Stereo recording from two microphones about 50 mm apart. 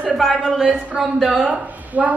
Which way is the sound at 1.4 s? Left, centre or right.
Right.